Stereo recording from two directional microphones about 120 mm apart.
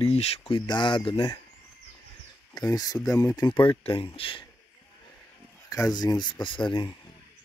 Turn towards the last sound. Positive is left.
turn(degrees=45)  # may be behind; listen again after turning